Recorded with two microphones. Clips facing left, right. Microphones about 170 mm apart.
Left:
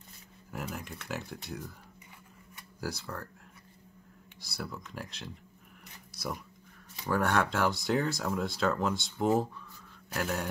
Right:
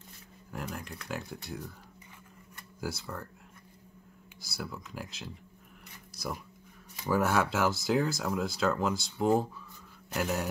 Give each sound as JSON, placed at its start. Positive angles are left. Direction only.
{"t": 0.5, "sound": "speech", "side_deg": 5}
{"t": 2.8, "sound": "speech", "side_deg": 0}
{"t": 4.4, "sound": "speech", "side_deg": 0}